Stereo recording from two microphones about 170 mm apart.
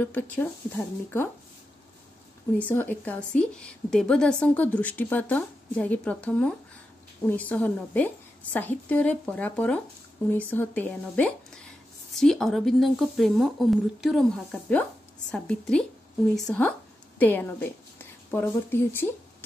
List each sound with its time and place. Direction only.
0.0 s a woman's voice: 10° left (ahead or behind)
2.6 s a woman's voice: 10° left (ahead or behind)